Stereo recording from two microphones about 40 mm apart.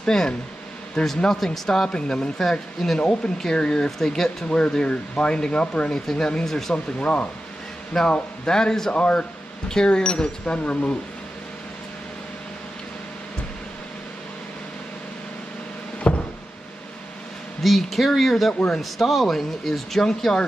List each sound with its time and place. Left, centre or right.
0.0 s speech: centre
1.9 s speech: left
4.5 s speech: left
6.0 s speech: centre
6.7 s speech: left
7.9 s speech: centre
8.9 s speech: left
16.1 s a sound: left
17.6 s speech: centre